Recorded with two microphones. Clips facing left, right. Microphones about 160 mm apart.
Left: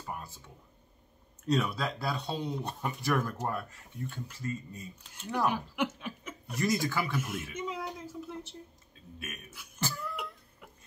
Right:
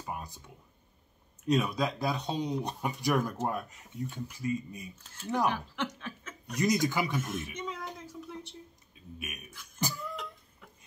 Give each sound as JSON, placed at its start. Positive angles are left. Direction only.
{"t": 0.0, "sound": "a sound", "side_deg": -15}
{"t": 1.5, "sound": "speech", "side_deg": -15}
{"t": 5.5, "sound": "speech", "side_deg": 10}
{"t": 6.5, "sound": "speech", "side_deg": -15}
{"t": 7.2, "sound": "a woman's voice", "side_deg": 10}
{"t": 9.0, "sound": "a sound", "side_deg": -15}
{"t": 9.8, "sound": "cough", "side_deg": -15}